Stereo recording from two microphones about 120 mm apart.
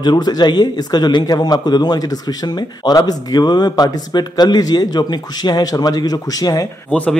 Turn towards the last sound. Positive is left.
turn(degrees=10)  # may be behind; listen again after turning